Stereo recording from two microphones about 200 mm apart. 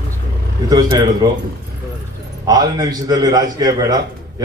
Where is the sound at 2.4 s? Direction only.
20° right (ahead or behind).